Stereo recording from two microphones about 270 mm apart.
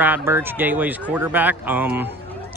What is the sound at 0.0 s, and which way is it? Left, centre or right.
Speech, centre.